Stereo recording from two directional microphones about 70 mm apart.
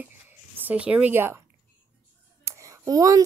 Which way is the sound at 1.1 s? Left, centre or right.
Right.